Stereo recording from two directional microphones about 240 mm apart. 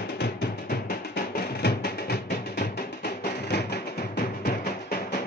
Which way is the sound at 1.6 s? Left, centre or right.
Left.